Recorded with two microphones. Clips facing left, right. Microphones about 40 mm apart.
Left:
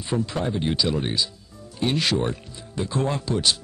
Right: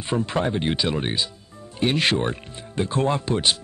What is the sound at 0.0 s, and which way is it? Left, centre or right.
Speech, right.